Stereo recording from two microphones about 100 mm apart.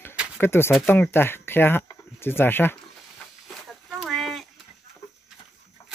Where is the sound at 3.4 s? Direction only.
Centre (ahead or behind).